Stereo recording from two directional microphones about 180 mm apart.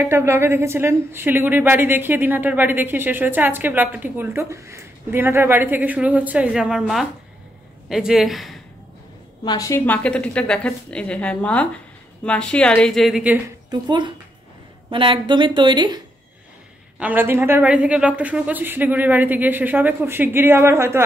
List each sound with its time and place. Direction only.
0.0 s a woman's voice: 15° right (ahead or behind)
9.4 s a woman's voice: 20° left (ahead or behind); by 13.4 s 5° right (ahead or behind)
13.7 s speech: 25° right (ahead or behind)
17.0 s speech: 10° right (ahead or behind)